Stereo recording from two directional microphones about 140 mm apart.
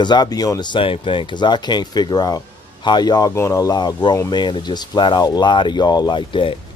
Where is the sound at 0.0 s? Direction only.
30° left (ahead or behind).